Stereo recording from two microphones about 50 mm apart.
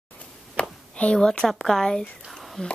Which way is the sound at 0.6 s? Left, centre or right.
Left.